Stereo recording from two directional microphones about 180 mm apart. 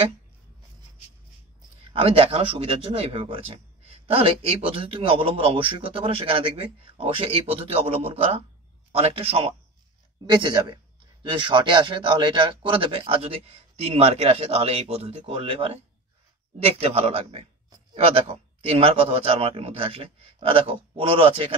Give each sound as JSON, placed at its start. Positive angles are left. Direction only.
{"t": 1.9, "sound": "a man's voice", "side_deg": -30}